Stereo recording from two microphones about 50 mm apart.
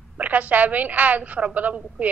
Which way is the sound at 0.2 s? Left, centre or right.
Right.